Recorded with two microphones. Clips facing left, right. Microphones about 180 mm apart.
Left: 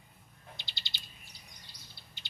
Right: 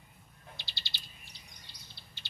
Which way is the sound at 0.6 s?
20° left (ahead or behind).